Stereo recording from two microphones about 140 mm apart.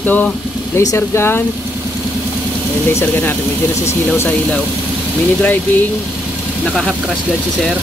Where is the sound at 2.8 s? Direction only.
15° left (ahead or behind).